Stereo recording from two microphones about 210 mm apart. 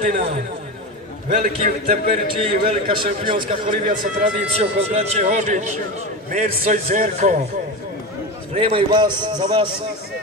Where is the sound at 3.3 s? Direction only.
40° right (ahead or behind).